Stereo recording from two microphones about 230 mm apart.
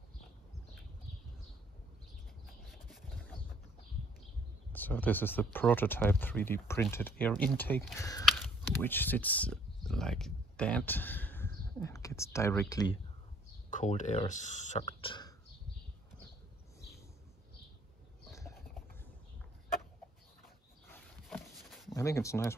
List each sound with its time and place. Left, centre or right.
2.7 s rub: centre
4.7 s speech: centre
8.0 s speech: centre
8.3 s speech: centre
13.7 s speech: left
15.0 s speech: left
20.9 s dog: centre
21.9 s speech: centre